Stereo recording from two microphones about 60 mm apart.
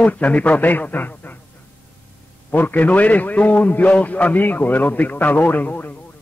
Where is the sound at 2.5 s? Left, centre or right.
Left.